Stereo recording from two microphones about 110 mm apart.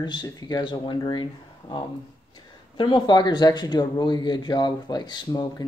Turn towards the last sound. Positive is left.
turn(degrees=40)  # may be behind; listen again after turning